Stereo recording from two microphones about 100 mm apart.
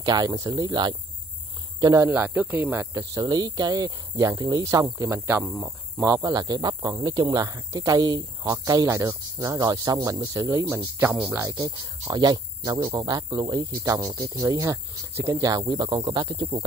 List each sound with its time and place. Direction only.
0.0 s speech: 40° right (ahead or behind)
2.0 s speech: 15° right (ahead or behind)
2.9 s speech: 35° right (ahead or behind)
5.4 s speech: centre (ahead or behind)
6.0 s speech: 35° right (ahead or behind)
8.8 s speech: 30° right (ahead or behind)
9.4 s speech: 40° right (ahead or behind)
11.0 s speech: 15° right (ahead or behind)
11.5 s speech: 40° right (ahead or behind)
15.6 s speech: 50° right (ahead or behind)